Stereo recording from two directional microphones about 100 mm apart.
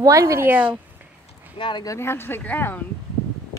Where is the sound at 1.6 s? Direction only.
50° left (ahead or behind).